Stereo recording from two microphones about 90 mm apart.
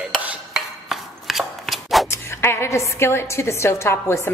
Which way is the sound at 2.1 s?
30° left (ahead or behind).